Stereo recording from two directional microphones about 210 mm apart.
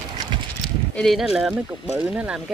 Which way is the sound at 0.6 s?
Centre (ahead or behind).